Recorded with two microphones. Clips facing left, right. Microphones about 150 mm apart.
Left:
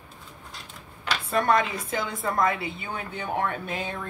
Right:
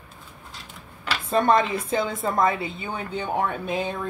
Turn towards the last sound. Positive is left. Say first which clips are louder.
# right 4 dB
turn(degrees=-20)  # may be behind; listen again after turning